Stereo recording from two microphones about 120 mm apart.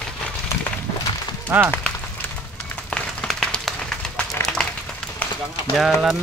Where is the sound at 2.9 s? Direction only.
5° left (ahead or behind).